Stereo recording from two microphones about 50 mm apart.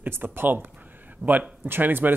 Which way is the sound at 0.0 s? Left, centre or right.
Right.